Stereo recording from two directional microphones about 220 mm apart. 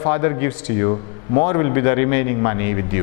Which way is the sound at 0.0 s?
15° left (ahead or behind).